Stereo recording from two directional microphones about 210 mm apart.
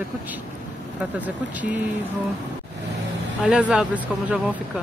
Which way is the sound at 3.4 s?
5° right (ahead or behind).